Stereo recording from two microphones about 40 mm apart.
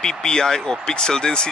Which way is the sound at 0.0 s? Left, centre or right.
Centre.